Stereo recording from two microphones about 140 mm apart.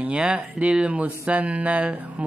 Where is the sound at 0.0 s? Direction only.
5° right (ahead or behind).